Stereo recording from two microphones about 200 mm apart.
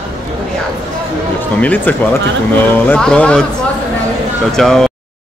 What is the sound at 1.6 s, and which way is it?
A man's voice, 10° left (ahead or behind).